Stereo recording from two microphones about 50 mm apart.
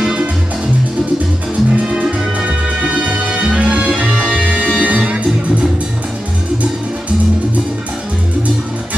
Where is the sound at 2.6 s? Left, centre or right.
Centre.